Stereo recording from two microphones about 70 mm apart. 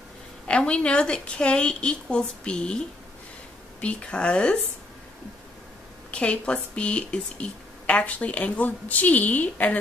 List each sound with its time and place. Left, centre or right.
0.5 s a woman's voice: centre
3.8 s a woman's voice: centre
6.1 s a woman's voice: centre